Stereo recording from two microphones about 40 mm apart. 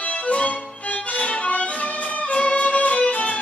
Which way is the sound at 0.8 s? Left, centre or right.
Left.